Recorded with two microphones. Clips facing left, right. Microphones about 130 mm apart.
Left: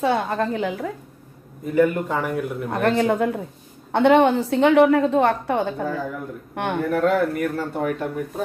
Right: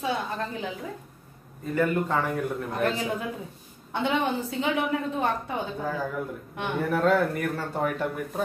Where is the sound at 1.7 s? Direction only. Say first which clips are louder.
Left 5 dB; 15° left (ahead or behind).